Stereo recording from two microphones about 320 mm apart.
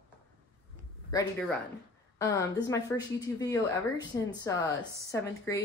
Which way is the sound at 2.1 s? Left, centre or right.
Centre.